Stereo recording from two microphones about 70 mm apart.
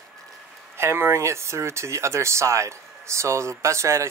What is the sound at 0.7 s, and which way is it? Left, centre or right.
Speech, right.